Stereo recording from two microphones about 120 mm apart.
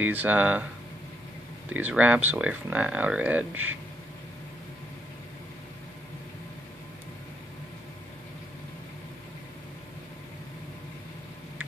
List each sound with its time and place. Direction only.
0.0 s speech: 15° right (ahead or behind)
1.7 s speech: 10° right (ahead or behind)